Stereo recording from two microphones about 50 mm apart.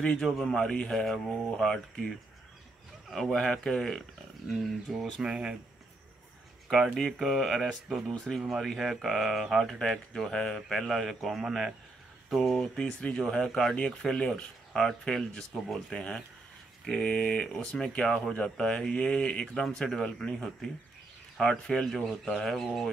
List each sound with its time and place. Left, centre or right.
0.0 s speech: centre
3.1 s speech: centre
4.9 s speech: centre
6.7 s speech: centre
9.7 s speech: centre
12.7 s speech: centre
19.4 s speech: centre